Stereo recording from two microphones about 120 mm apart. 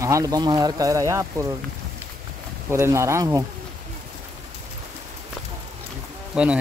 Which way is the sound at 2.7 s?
25° right (ahead or behind).